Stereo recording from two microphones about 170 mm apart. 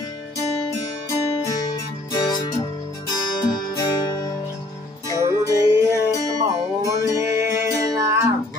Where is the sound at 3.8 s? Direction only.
25° left (ahead or behind).